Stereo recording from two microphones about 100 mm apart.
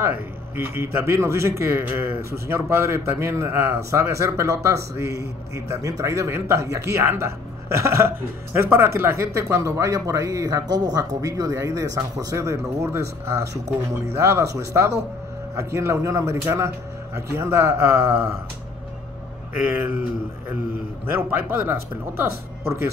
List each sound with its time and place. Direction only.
0.0 s speech: 20° right (ahead or behind)
19.8 s speech: 20° right (ahead or behind)
21.1 s speech: 20° right (ahead or behind)